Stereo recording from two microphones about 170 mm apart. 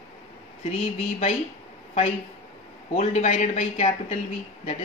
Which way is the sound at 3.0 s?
40° left (ahead or behind).